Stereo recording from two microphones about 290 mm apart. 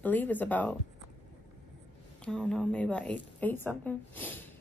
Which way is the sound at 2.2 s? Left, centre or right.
Centre.